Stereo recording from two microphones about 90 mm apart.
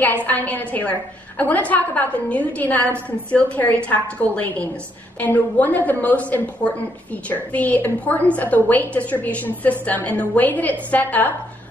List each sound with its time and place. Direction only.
0.0 s a woman's voice: 15° left (ahead or behind)